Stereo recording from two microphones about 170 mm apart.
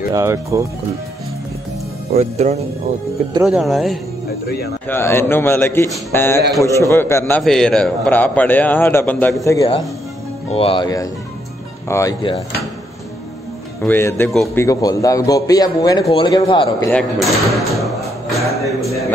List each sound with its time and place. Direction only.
0.1 s speech: 15° right (ahead or behind)
2.1 s speech: 40° right (ahead or behind)
3.4 s speech: centre (ahead or behind)
4.8 s a man's voice: 15° left (ahead or behind)
10.5 s a man's voice: 35° left (ahead or behind)
13.7 s a man's voice: 10° left (ahead or behind); by 16.7 s 30° left (ahead or behind)
16.9 s speech: centre (ahead or behind)
17.7 s music: centre (ahead or behind)